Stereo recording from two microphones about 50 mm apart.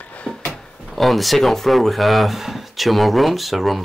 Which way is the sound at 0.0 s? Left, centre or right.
Left.